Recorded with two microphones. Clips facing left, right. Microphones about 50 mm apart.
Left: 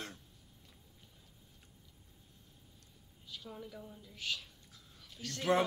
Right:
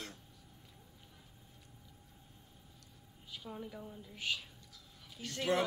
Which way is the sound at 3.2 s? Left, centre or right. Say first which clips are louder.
Right 2 dB; centre.